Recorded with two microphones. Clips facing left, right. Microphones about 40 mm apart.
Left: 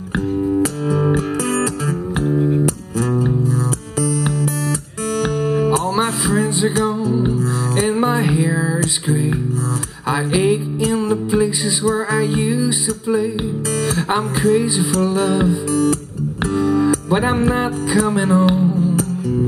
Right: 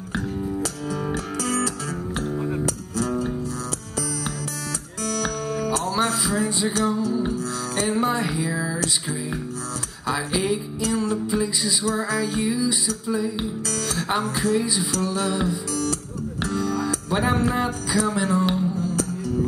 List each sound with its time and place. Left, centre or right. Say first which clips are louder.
0.6 s music: left 10 dB; left
10.0 s music: left 7 dB; left